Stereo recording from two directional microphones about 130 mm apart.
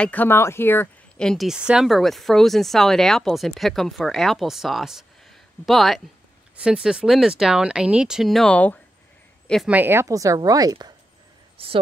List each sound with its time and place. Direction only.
0.0 s speech: 15° left (ahead or behind)
1.2 s speech: centre (ahead or behind)
9.7 s speech: 15° right (ahead or behind)
11.5 s speech: 45° right (ahead or behind)